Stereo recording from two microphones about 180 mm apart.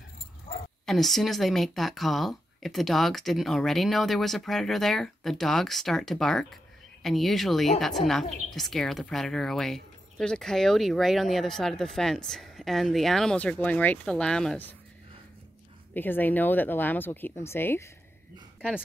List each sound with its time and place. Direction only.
0.5 s dog: 35° left (ahead or behind)
0.8 s a woman's voice: centre (ahead or behind)
15.9 s speech: 10° left (ahead or behind)